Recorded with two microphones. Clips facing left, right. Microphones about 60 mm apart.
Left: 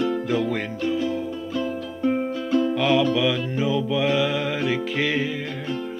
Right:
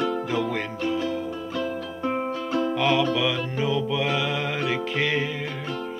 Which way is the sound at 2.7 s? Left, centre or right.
Centre.